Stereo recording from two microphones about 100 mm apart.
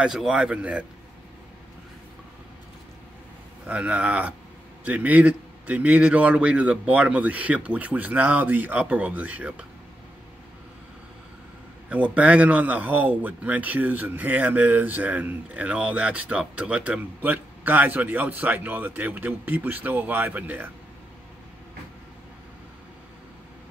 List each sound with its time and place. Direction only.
0.0 s speech: 5° right (ahead or behind)
3.6 s speech: 15° right (ahead or behind)
11.9 s speech: 15° right (ahead or behind)